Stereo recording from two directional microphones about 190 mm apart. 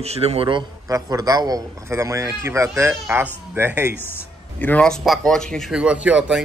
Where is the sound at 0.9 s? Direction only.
20° right (ahead or behind).